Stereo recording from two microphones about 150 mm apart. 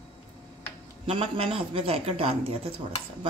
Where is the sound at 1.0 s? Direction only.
40° right (ahead or behind).